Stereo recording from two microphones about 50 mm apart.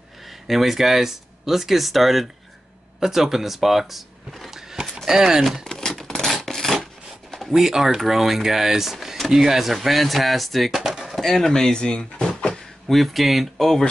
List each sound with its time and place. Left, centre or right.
0.5 s speech: centre
5.6 s rub: centre
7.2 s a sound: centre
7.5 s speech: centre
10.8 s a sound: centre
11.1 s speech: centre
12.3 s drawer open or close: centre
12.8 s speech: centre